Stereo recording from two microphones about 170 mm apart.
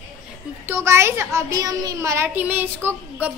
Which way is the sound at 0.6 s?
15° right (ahead or behind).